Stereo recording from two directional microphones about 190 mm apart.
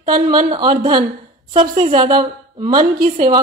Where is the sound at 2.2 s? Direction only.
20° right (ahead or behind).